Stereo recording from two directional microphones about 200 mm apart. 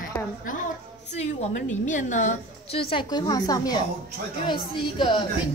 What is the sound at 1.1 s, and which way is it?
A woman's voice, 35° left (ahead or behind).